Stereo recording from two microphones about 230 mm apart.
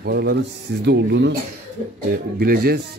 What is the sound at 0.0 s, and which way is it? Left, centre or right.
A man's voice, right.